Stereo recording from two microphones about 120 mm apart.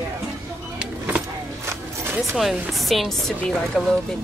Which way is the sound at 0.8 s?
10° right (ahead or behind).